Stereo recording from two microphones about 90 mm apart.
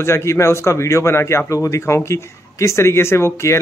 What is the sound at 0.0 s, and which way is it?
Speech, 30° left (ahead or behind).